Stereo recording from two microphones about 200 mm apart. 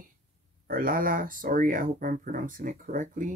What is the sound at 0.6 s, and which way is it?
Speech, 45° right (ahead or behind).